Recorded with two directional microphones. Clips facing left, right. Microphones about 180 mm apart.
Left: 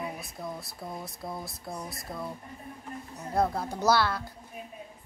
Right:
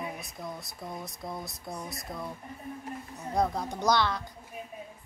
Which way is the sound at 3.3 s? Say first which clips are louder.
Left 1 dB; 5° left (ahead or behind).